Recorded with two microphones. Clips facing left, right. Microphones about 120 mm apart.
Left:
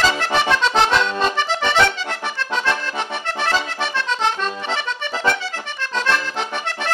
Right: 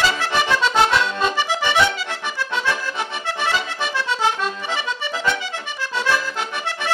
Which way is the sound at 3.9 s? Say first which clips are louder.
Right 1 dB; 10° right (ahead or behind).